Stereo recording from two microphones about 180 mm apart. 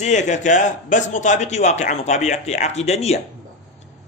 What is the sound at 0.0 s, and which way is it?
Speech, 40° left (ahead or behind).